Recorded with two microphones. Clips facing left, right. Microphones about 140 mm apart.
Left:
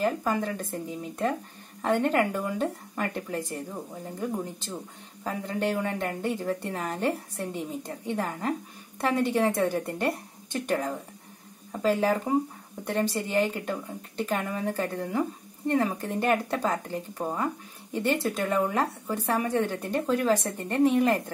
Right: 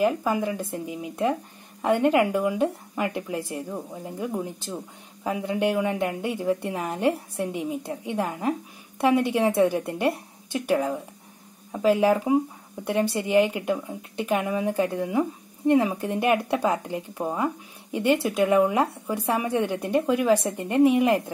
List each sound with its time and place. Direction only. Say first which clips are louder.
0.0 s speech: right 4 dB; 10° right (ahead or behind)